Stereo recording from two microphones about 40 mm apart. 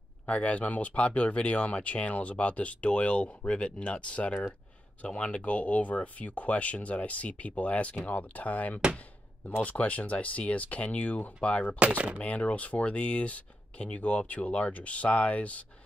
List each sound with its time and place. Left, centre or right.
0.3 s speech: left
11.9 s speech: right
12.2 s speech: left